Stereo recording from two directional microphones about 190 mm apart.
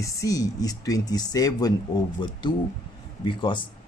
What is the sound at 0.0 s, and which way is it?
Speech, 15° left (ahead or behind).